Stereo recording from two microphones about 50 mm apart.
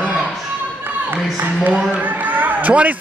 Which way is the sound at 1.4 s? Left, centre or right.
Right.